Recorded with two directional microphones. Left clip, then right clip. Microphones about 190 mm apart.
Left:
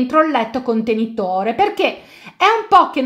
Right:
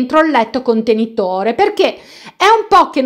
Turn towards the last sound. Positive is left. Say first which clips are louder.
# right 2 dB
turn(degrees=-40)  # may be behind; listen again after turning